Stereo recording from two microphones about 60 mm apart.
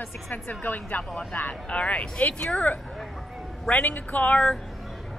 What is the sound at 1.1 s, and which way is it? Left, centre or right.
A woman's voice, centre.